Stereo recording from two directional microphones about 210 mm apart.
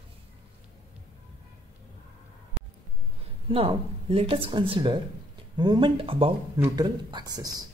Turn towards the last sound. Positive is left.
turn(degrees=-15)  # may be behind; listen again after turning